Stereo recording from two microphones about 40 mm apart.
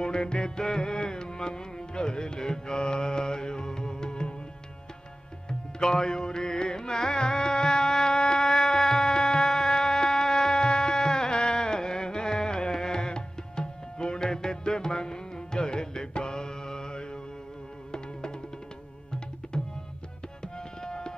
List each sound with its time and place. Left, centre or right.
0.0 s music: left
5.5 s music: centre
19.4 s music: left
20.5 s tabla: centre